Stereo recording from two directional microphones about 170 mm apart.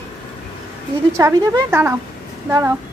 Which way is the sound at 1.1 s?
15° right (ahead or behind).